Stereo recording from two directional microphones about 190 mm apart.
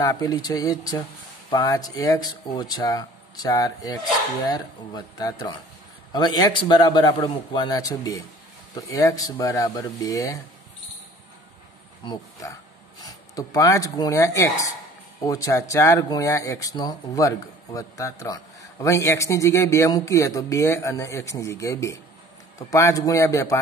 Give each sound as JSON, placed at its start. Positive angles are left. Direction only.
{"t": 0.0, "sound": "speech", "side_deg": 20}
{"t": 12.0, "sound": "speech", "side_deg": 20}